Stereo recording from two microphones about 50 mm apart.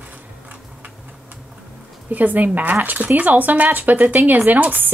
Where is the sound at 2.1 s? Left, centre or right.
Right.